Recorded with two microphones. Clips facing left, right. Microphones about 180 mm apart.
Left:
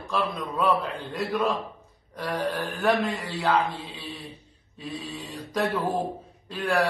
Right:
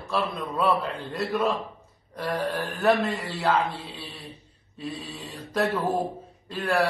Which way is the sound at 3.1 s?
Centre (ahead or behind).